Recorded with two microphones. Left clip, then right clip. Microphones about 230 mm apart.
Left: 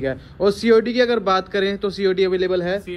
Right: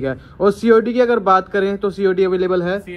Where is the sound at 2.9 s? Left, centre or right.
Centre.